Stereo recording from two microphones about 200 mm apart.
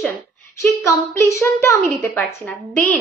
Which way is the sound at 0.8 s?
15° left (ahead or behind).